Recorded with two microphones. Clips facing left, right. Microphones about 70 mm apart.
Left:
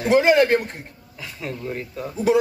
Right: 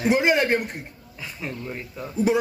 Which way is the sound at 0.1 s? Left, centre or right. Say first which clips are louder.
Left 6 dB; centre.